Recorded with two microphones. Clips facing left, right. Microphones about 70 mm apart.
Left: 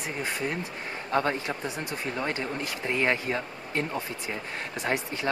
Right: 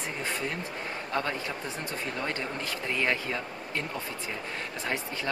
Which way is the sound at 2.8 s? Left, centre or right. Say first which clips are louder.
Left 3 dB; left.